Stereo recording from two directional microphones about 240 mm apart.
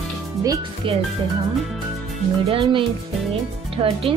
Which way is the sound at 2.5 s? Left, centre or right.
Right.